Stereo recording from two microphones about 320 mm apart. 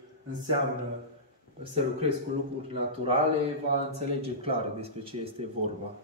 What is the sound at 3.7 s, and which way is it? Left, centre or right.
Speech, centre.